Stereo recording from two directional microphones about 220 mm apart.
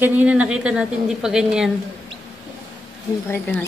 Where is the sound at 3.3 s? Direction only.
10° left (ahead or behind).